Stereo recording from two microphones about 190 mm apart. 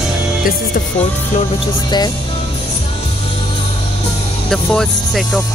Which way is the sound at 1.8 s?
20° left (ahead or behind).